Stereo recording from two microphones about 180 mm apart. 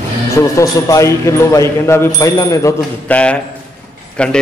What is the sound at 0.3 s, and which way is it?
A man's voice, 15° left (ahead or behind).